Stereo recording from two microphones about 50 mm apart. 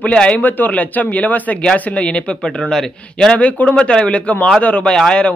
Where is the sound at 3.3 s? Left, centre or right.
Left.